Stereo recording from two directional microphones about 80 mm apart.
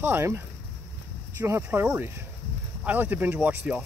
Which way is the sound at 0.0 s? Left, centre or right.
Right.